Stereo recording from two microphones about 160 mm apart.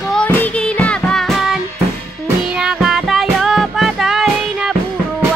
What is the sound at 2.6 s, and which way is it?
Music, 5° right (ahead or behind).